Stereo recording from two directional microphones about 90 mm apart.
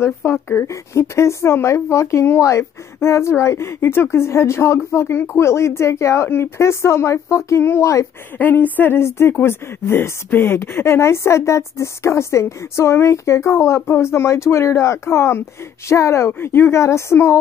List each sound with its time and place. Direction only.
0.0 s a woman's voice: 30° left (ahead or behind)
8.4 s a woman's voice: 20° left (ahead or behind)